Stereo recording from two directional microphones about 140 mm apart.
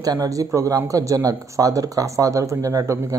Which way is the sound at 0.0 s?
25° right (ahead or behind).